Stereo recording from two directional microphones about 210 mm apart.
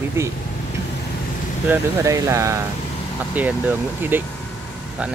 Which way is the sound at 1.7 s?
15° right (ahead or behind).